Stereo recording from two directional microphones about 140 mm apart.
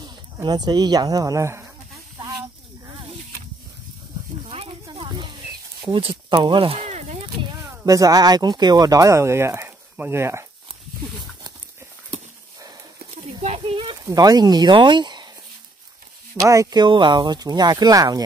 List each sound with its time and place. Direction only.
0.0 s speech: 30° right (ahead or behind)
2.1 s snake: 25° right (ahead or behind)
4.5 s a sound: 40° right (ahead or behind)
7.8 s speech: 25° right (ahead or behind)
13.1 s a sound: 50° right (ahead or behind)
13.9 s speech: 25° right (ahead or behind)
16.3 s speech: 25° right (ahead or behind)